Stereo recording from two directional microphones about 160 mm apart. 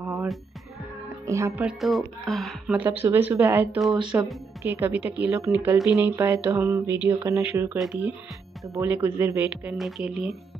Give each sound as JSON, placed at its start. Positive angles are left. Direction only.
{"t": 0.0, "sound": "music", "side_deg": -15}
{"t": 1.2, "sound": "speech", "side_deg": -20}
{"t": 1.7, "sound": "speech", "side_deg": 0}
{"t": 3.0, "sound": "speech", "side_deg": -10}
{"t": 8.8, "sound": "speech", "side_deg": -10}
{"t": 9.8, "sound": "speech", "side_deg": 0}